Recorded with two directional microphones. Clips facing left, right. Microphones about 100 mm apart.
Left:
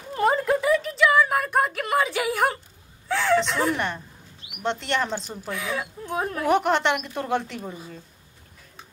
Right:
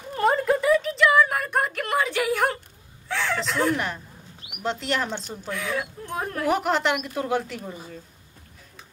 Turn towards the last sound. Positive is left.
turn(degrees=0)  # may be behind; listen again after turning